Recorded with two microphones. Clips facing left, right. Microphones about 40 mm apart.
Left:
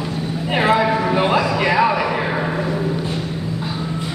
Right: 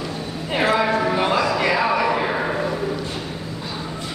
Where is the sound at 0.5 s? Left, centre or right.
Centre.